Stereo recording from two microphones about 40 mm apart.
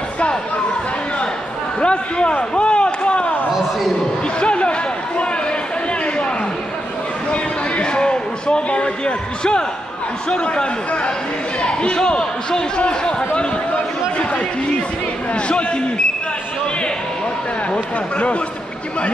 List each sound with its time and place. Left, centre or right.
1.8 s speech: left
2.3 s a sound: left
4.4 s speech: left
7.2 s a sound: left
10.3 s speech: left
15.3 s speech: left
18.1 s speech: left